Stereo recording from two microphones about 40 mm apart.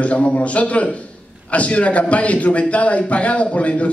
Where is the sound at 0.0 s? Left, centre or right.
Left.